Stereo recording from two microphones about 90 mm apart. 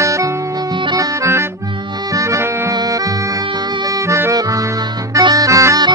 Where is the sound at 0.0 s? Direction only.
35° right (ahead or behind).